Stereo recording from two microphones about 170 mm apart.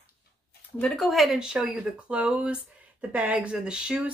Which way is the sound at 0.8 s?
Centre (ahead or behind).